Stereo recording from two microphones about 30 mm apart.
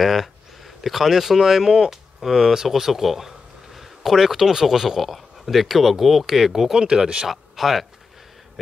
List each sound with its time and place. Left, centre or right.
0.0 s speech: centre
6.2 s speech: centre
6.9 s speech: right
7.2 s speech: centre